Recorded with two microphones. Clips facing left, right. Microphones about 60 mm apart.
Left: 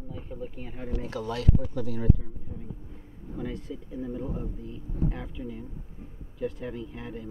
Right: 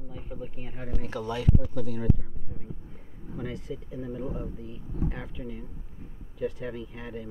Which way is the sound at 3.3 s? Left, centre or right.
Centre.